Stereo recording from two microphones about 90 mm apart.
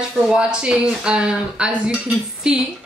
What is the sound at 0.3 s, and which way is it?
Speech, 10° right (ahead or behind).